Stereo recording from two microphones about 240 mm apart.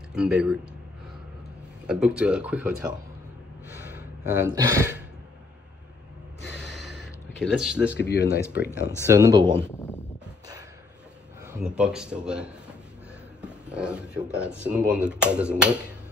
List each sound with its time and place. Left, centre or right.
0.1 s speech: centre
1.9 s speech: centre
6.5 s a sound: centre
8.0 s speech: left
9.0 s speech: centre
9.6 s speech: centre
11.4 s speech: centre